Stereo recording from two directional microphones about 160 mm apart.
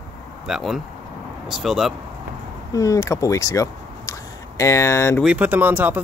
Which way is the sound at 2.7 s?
20° left (ahead or behind).